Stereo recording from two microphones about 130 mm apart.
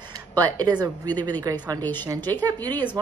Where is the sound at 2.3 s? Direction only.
30° right (ahead or behind).